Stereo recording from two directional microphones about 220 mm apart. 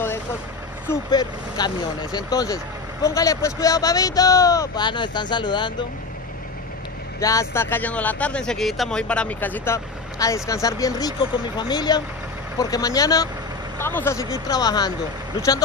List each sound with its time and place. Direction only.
0.8 s speech: 20° left (ahead or behind)
7.2 s speech: 15° left (ahead or behind)